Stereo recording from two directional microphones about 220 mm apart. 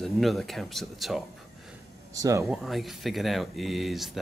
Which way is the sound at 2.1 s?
15° right (ahead or behind).